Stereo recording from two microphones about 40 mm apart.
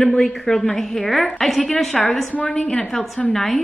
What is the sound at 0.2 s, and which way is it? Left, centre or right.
A woman's voice, centre.